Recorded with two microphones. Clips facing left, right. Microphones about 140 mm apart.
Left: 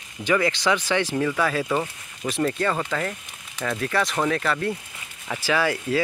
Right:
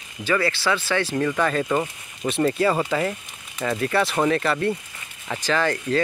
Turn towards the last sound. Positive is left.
turn(degrees=10)  # may be behind; listen again after turning